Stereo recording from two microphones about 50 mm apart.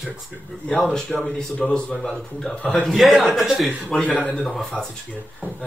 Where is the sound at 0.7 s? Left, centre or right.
Centre.